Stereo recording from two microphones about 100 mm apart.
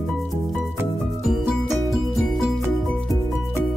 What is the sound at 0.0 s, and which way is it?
Music, centre (ahead or behind).